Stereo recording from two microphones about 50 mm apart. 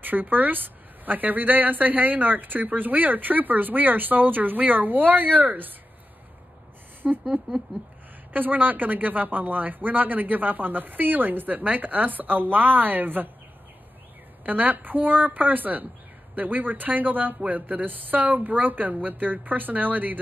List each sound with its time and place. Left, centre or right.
0.0 s a woman's voice: right
7.0 s speech: centre
8.3 s a woman's voice: right
14.4 s a woman's voice: right